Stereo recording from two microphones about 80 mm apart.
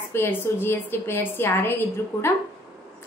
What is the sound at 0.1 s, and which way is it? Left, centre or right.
A woman's voice, left.